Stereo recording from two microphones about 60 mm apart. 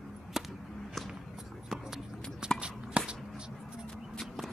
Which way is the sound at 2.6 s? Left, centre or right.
Centre.